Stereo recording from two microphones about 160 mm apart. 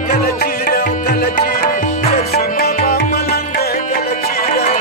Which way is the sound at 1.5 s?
55° left (ahead or behind).